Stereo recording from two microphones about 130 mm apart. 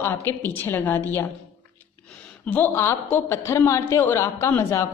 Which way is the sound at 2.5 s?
15° left (ahead or behind).